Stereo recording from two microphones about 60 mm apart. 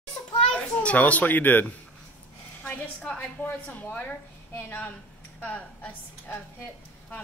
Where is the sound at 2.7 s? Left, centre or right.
Centre; by 4.9 s left.